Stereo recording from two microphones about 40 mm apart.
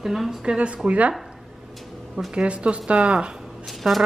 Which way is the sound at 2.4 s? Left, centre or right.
Right.